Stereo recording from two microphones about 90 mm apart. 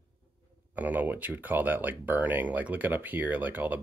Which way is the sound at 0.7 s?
20° right (ahead or behind).